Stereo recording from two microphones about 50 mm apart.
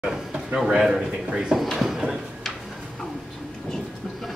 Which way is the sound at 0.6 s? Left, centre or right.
Centre.